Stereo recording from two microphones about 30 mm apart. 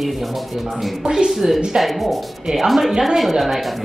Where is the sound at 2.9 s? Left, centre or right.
Centre.